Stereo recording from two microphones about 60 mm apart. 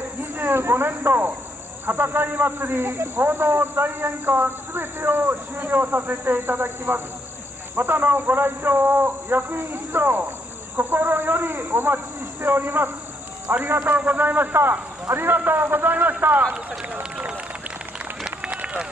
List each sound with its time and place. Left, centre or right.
0.2 s a man's voice: right
16.5 s speech: centre
18.2 s run: centre